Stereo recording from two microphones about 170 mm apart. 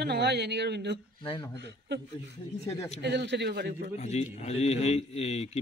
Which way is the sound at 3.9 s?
40° left (ahead or behind).